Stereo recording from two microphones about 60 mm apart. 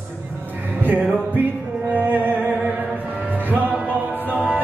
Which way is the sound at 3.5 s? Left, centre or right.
Right.